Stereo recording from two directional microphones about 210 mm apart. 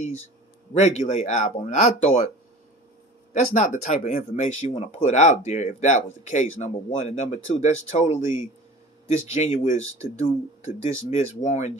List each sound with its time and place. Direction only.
0.7 s speech: 35° left (ahead or behind)
3.3 s speech: 35° left (ahead or behind)